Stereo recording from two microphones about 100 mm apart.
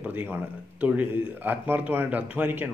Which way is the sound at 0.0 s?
15° right (ahead or behind).